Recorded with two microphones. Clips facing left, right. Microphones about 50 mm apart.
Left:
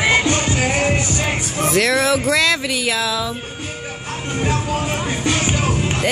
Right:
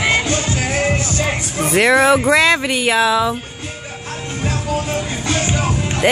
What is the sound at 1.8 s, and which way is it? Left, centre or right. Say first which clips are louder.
Speech: right 8 dB; right.